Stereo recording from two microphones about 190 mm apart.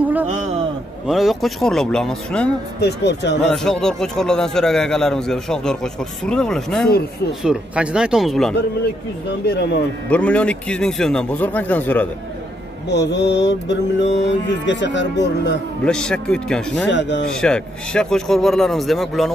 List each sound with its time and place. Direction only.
0.0 s a sound: 10° right (ahead or behind)
1.0 s a man's voice: centre (ahead or behind)
2.8 s speech: 60° left (ahead or behind)
3.4 s a man's voice: centre (ahead or behind)
9.5 s speech: 60° left (ahead or behind)
10.0 s speech: 5° left (ahead or behind)
12.8 s mantra: 65° left (ahead or behind)
15.8 s a man's voice: 5° left (ahead or behind)
16.9 s mantra: 70° left (ahead or behind)
17.3 s a man's voice: 5° left (ahead or behind)